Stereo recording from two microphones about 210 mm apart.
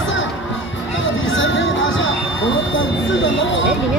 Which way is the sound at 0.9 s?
65° left (ahead or behind).